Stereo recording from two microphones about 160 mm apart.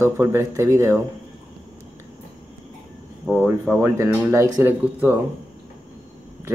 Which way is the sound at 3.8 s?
15° right (ahead or behind).